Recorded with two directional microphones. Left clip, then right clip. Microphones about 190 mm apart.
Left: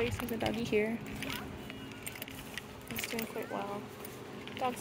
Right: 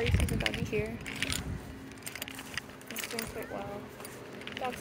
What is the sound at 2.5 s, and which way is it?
Keys jangling, 40° right (ahead or behind).